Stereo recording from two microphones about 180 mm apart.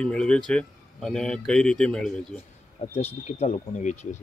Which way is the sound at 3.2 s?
35° left (ahead or behind).